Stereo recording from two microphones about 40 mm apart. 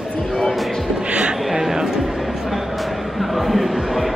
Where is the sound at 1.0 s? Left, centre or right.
Right.